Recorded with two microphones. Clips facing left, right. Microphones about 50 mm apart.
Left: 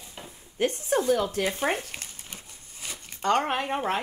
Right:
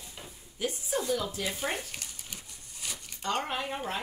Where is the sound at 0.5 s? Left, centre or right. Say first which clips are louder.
Left 7 dB; left.